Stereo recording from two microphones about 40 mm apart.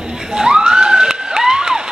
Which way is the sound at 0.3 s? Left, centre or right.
Centre.